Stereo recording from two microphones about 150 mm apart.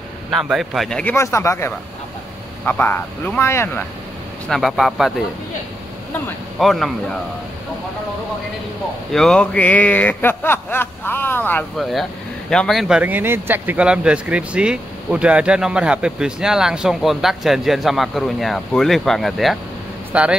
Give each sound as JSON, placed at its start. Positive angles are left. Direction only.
{"t": 0.3, "sound": "speech", "side_deg": 0}
{"t": 1.1, "sound": "a man's voice", "side_deg": 20}
{"t": 4.5, "sound": "speech", "side_deg": 0}
{"t": 6.6, "sound": "speech", "side_deg": 0}
{"t": 9.1, "sound": "a man's voice", "side_deg": 5}
{"t": 11.7, "sound": "speech", "side_deg": 0}